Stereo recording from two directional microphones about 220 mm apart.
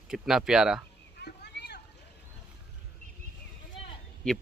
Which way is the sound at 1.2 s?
50° left (ahead or behind).